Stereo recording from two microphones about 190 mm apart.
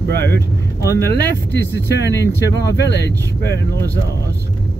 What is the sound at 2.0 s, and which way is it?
Speech, 65° left (ahead or behind).